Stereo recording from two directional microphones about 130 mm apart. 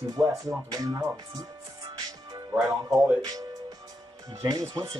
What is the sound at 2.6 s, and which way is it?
Speech, centre (ahead or behind).